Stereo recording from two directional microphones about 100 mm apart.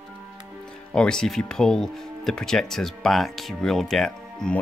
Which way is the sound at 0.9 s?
10° left (ahead or behind).